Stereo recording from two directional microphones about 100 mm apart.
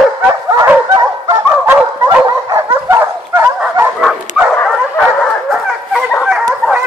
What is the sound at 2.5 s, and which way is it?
Dog, 25° right (ahead or behind).